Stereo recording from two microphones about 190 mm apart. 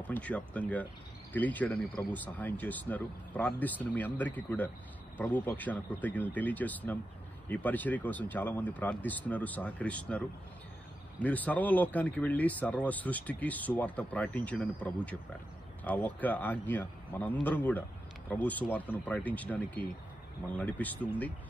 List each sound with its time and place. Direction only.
0.0 s speech: 10° left (ahead or behind)